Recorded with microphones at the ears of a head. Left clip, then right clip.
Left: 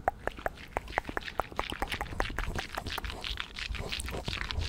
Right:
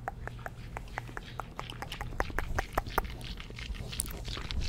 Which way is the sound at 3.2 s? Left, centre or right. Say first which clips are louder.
Left 7 dB; left.